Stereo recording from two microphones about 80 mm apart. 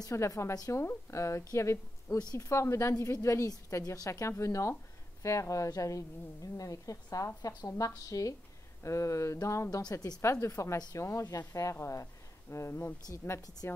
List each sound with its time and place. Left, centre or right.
0.0 s a woman's voice: left
10.2 s a woman's voice: left
11.2 s a woman's voice: left